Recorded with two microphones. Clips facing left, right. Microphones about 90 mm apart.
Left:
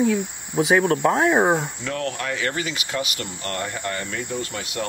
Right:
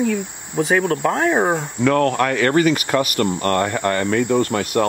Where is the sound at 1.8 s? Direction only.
60° right (ahead or behind).